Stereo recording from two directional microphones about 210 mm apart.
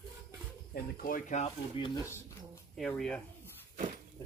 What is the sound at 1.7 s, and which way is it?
Speech, 20° left (ahead or behind).